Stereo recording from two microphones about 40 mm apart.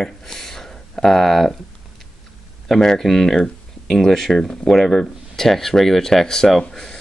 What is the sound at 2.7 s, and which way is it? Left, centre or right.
Speech, centre.